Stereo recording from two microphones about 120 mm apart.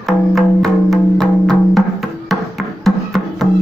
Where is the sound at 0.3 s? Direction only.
Centre (ahead or behind).